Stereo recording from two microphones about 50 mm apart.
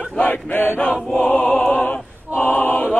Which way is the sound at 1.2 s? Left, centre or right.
Left.